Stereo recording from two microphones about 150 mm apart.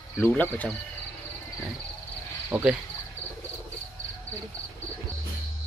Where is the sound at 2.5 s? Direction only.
5° right (ahead or behind).